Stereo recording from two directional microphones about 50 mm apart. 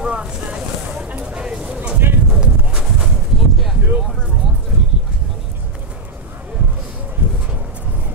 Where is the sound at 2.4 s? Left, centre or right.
Centre.